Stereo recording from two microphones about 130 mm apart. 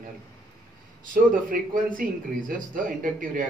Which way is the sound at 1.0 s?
90° right.